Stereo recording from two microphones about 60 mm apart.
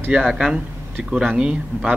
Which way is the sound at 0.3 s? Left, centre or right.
Centre.